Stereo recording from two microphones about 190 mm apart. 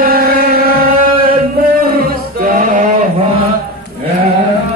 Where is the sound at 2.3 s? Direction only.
45° right (ahead or behind).